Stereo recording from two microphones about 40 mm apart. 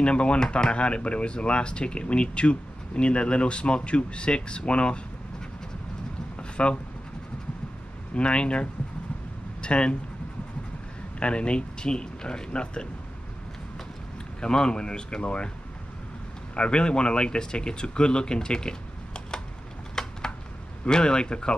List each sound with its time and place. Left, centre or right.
0.0 s speech: left
6.5 s speech: left
8.1 s speech: left
11.1 s speech: left
14.4 s speech: left
16.5 s speech: left
20.0 s a sound: centre
20.8 s speech: left